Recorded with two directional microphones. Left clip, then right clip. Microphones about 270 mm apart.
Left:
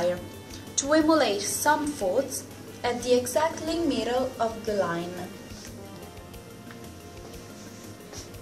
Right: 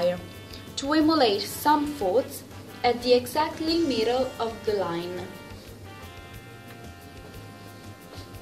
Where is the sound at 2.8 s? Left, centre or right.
Right.